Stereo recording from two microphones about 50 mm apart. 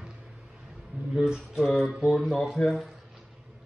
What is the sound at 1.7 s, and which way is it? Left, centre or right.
Speech, centre.